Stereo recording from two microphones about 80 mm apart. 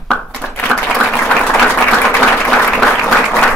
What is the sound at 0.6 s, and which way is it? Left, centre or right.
Applause, centre.